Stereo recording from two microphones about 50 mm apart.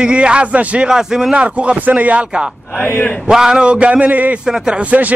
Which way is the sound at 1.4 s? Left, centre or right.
Right.